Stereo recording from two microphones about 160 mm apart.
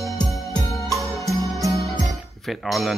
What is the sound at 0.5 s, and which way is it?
Music, 25° left (ahead or behind).